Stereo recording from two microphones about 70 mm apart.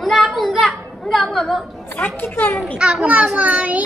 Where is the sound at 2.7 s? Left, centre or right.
Centre.